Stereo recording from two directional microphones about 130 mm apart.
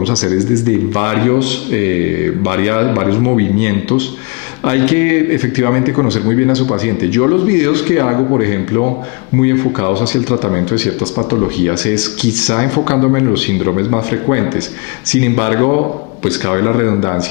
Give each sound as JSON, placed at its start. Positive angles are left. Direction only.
{"t": 0.0, "sound": "a man's voice", "side_deg": 10}
{"t": 11.7, "sound": "a man's voice", "side_deg": 15}